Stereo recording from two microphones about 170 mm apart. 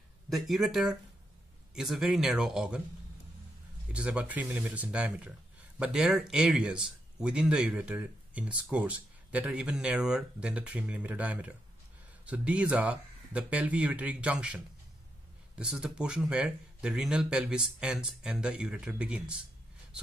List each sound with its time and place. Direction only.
0.3 s speech: centre (ahead or behind)
3.9 s speech: 5° right (ahead or behind)